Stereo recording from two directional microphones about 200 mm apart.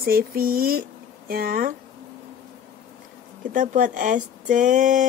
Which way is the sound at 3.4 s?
40° right (ahead or behind).